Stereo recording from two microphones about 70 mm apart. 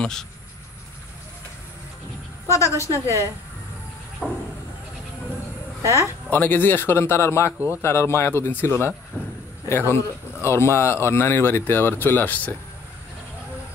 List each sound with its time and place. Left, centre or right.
0.0 s speech: centre
2.4 s a woman's voice: left
4.2 s speech: centre
6.3 s speech: left